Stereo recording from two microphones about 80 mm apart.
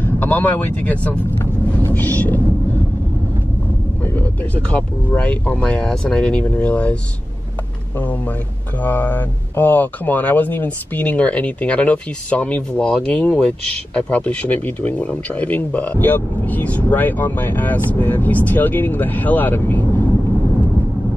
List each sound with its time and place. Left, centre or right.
0.0 s speech: left
1.4 s vehicle: left
2.0 s speech: left
4.0 s vehicle: left
4.6 s speech: centre
8.8 s speech: left